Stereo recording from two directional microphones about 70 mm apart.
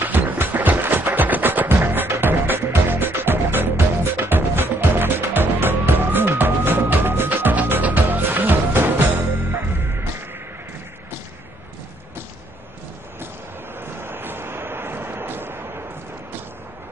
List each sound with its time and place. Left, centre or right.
0.0 s music: right
13.7 s vehicle: right